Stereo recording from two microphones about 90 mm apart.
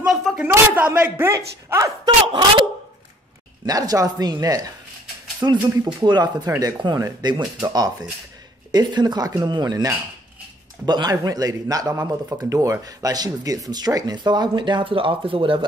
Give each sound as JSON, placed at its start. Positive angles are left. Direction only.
{"t": 0.0, "sound": "a sound", "side_deg": 0}
{"t": 0.5, "sound": "a man's voice", "side_deg": -20}
{"t": 1.3, "sound": "speech", "side_deg": -35}
{"t": 2.2, "sound": "a woman's voice", "side_deg": -75}
{"t": 3.6, "sound": "speech", "side_deg": -45}
{"t": 5.4, "sound": "speech", "side_deg": -55}